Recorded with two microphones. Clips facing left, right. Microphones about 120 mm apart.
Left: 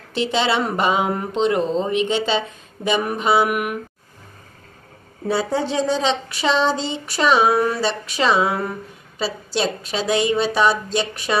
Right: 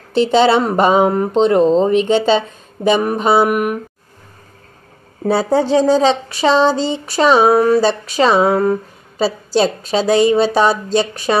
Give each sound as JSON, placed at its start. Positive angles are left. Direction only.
{"t": 0.1, "sound": "speech", "side_deg": -35}
{"t": 5.2, "sound": "speech", "side_deg": -35}